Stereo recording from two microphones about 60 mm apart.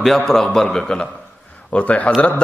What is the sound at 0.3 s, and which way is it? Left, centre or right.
A man's voice, centre.